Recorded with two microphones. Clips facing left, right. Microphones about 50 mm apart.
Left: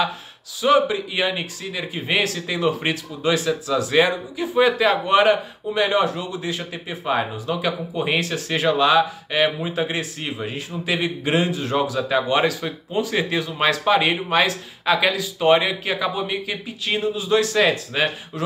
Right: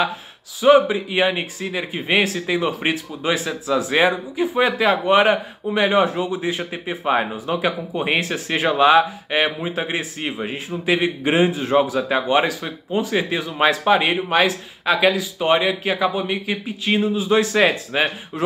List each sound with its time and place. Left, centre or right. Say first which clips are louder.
0.6 s speech: right 4 dB; centre